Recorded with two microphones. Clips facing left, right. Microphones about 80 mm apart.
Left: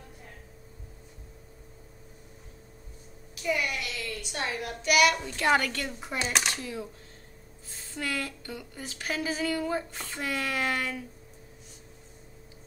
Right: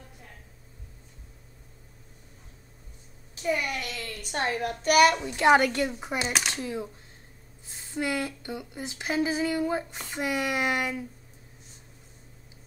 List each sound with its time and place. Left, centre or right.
3.4 s a child's voice: right
5.2 s speech: right